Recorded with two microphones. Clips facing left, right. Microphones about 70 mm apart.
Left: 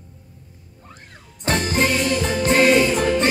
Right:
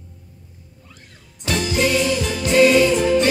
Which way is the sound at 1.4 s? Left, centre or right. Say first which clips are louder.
Even; left.